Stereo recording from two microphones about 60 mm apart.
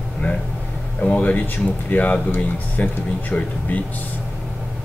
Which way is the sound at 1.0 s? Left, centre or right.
Left.